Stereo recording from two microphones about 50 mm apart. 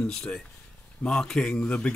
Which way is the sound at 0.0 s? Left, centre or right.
Centre.